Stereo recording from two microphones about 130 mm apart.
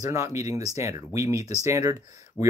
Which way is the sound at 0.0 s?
25° right (ahead or behind).